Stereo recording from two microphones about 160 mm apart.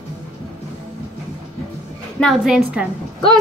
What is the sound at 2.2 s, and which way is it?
Speech, centre (ahead or behind).